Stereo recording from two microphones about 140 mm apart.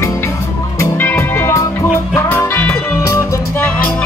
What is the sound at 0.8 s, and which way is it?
Music, 15° left (ahead or behind).